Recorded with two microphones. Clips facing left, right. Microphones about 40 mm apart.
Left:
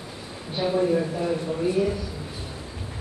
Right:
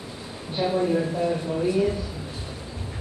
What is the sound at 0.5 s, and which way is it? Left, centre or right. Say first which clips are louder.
Speech: left 1 dB; centre.